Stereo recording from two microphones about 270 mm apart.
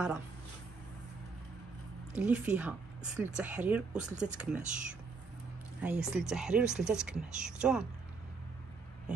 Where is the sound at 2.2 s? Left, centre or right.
Centre.